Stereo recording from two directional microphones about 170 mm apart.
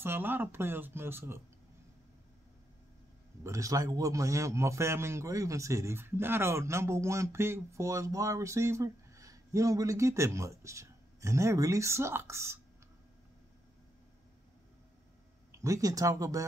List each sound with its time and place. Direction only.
0.0 s a man's voice: 10° right (ahead or behind)
3.4 s a man's voice: 20° right (ahead or behind)
15.5 s speech: 20° right (ahead or behind)